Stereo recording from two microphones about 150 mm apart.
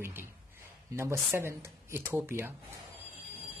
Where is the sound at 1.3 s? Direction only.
15° right (ahead or behind).